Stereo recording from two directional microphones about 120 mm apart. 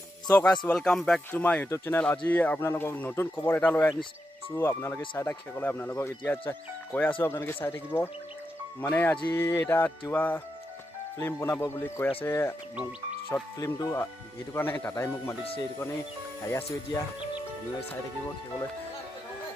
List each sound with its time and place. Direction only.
0.7 s speech: 5° left (ahead or behind)
9.3 s music: 20° left (ahead or behind)
16.4 s music: 20° left (ahead or behind)